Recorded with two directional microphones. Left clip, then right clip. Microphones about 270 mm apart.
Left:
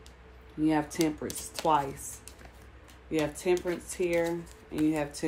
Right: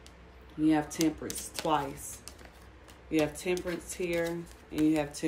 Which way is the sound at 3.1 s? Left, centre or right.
Centre.